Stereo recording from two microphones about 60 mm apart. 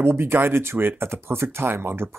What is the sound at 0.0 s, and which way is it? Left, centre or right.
Speech, right.